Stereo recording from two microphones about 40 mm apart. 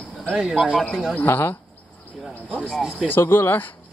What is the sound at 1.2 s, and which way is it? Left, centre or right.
Speech, left.